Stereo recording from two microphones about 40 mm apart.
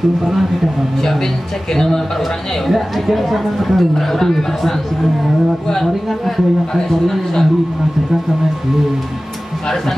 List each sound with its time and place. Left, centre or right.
0.2 s speech: centre
1.7 s speech: centre
2.7 s speech: centre
6.2 s speech: centre